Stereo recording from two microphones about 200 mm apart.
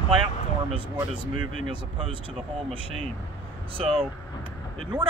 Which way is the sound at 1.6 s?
25° right (ahead or behind).